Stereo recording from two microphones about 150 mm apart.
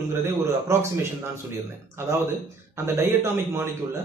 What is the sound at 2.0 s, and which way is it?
A man's voice, 15° right (ahead or behind).